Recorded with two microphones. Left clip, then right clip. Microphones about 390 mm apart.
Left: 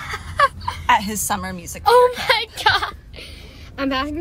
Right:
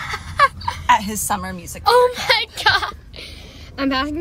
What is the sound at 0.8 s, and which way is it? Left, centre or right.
Speech, centre.